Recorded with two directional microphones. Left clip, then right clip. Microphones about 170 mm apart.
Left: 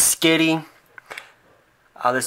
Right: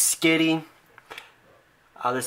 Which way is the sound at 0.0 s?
15° left (ahead or behind).